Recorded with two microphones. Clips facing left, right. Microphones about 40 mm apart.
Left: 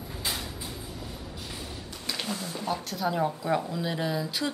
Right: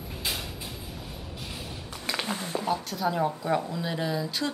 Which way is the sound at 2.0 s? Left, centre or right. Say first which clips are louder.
Right 2 dB; right.